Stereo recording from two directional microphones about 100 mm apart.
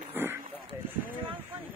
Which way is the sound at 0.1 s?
20° right (ahead or behind).